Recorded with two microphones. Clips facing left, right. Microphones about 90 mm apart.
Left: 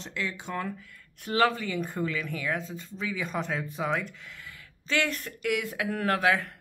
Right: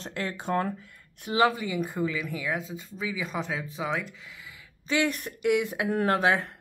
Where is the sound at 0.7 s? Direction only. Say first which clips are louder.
Even; 25° right (ahead or behind).